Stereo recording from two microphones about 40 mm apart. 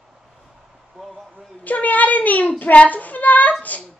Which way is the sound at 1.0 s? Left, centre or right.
Centre.